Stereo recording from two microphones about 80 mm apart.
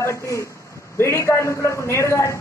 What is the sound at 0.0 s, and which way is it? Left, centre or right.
A man's voice, left.